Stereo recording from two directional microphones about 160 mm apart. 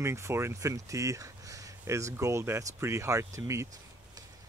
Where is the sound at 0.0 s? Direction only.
15° right (ahead or behind).